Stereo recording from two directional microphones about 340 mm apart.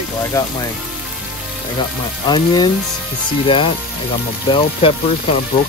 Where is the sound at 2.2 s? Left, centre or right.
Centre.